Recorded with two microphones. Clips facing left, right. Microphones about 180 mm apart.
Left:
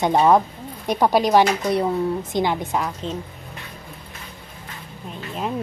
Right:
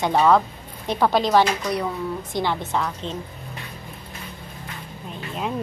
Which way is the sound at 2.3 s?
15° left (ahead or behind).